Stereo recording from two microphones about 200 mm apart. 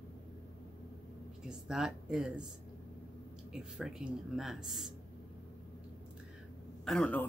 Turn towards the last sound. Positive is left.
turn(degrees=5)  # may be behind; listen again after turning